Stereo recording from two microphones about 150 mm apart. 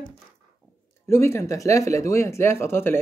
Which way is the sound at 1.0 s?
15° left (ahead or behind).